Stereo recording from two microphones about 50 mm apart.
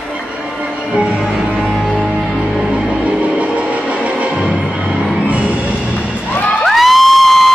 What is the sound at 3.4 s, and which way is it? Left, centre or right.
Music, right.